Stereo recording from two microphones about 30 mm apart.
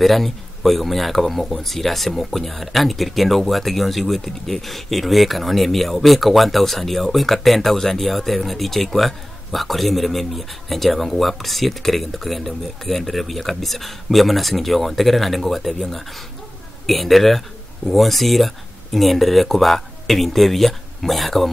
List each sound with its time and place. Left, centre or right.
0.0 s a man's voice: centre